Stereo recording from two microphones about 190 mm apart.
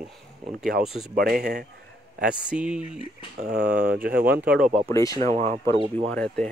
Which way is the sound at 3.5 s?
55° right (ahead or behind).